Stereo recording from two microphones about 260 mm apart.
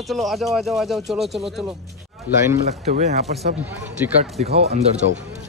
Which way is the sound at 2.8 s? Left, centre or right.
Right.